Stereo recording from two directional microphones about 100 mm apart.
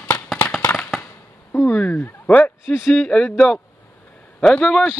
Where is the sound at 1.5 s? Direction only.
20° left (ahead or behind).